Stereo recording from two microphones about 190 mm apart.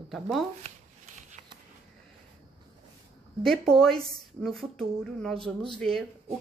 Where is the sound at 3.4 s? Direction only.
Centre (ahead or behind).